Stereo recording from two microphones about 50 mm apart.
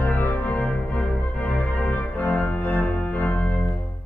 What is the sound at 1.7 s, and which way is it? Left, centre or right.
Music, left.